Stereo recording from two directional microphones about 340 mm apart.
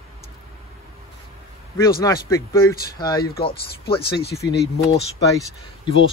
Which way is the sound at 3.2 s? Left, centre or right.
Left.